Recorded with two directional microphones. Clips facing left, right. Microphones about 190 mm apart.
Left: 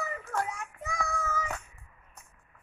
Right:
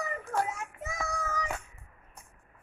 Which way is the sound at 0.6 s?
25° right (ahead or behind).